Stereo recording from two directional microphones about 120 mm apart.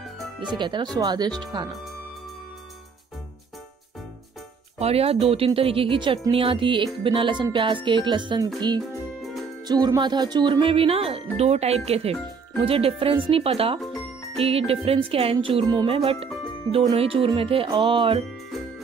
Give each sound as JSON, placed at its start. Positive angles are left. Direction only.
{"t": 0.4, "sound": "speech", "side_deg": -40}
{"t": 4.7, "sound": "speech", "side_deg": -55}
{"t": 15.7, "sound": "speech", "side_deg": -40}
{"t": 16.0, "sound": "speech", "side_deg": -50}